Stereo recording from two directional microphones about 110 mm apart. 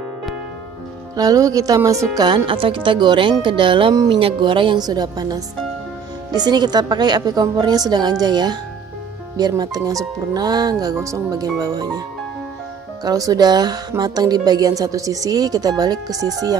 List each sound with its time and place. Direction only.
1.1 s speech: 35° right (ahead or behind)
13.0 s speech: 35° right (ahead or behind)